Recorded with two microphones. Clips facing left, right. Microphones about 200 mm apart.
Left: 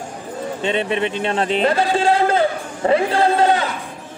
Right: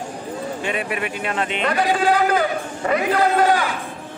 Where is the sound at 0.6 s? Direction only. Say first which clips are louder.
Left 7 dB; 25° left (ahead or behind).